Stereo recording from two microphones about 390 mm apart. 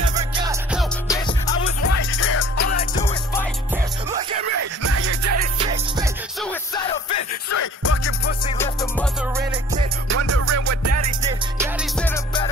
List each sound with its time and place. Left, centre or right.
0.4 s music: centre
1.0 s music: centre
1.8 s music: left
4.6 s music: right
7.2 s music: left
10.0 s music: right
11.2 s music: centre